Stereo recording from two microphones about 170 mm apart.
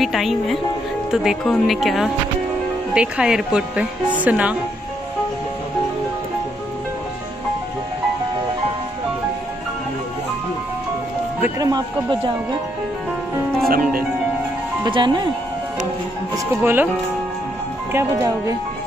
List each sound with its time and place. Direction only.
0.0 s speech: centre (ahead or behind)
11.4 s speech: 20° right (ahead or behind)
13.7 s speech: 60° right (ahead or behind)
14.9 s speech: 25° right (ahead or behind)
16.6 s speech: 10° right (ahead or behind)
17.9 s speech: 15° right (ahead or behind)